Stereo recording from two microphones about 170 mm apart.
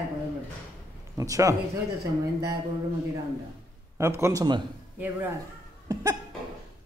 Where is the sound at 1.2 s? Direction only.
20° right (ahead or behind).